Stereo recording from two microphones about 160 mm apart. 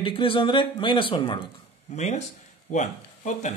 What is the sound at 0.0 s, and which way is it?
Speech, 35° left (ahead or behind).